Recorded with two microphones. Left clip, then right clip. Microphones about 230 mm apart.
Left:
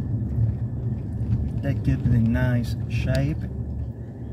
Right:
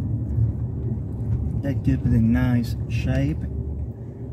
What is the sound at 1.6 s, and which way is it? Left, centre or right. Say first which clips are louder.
Speech: right 3 dB; right.